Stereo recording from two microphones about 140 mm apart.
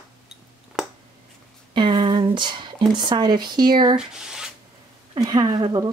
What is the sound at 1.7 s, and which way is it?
Speech, 35° right (ahead or behind).